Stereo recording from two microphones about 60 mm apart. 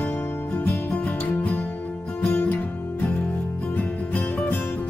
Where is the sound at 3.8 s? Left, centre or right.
Left.